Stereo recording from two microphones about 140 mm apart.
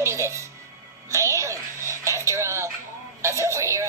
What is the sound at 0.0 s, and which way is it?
Music, 20° right (ahead or behind).